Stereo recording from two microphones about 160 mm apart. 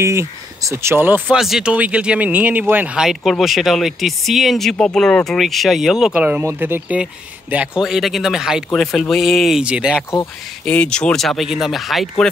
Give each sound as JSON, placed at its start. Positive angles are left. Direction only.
{"t": 0.0, "sound": "speech", "side_deg": -15}
{"t": 10.6, "sound": "speech", "side_deg": 5}